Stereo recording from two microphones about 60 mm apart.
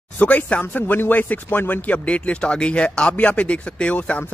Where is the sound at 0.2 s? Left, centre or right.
Left.